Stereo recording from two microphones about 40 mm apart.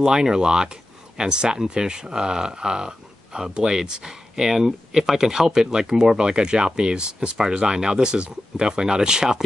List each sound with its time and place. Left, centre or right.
0.0 s speech: centre